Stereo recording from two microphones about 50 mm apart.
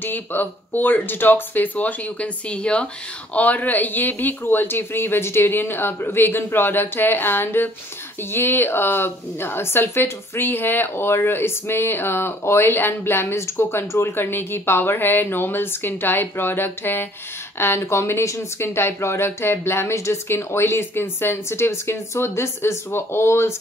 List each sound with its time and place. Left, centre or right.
0.0 s speech: left
3.3 s speech: left
14.2 s speech: left
17.6 s speech: left
18.6 s speech: left